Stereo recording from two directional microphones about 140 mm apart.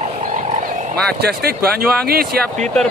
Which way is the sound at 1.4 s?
90° right.